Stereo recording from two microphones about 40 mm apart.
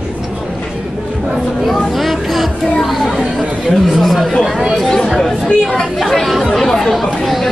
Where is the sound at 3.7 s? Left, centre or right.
Centre.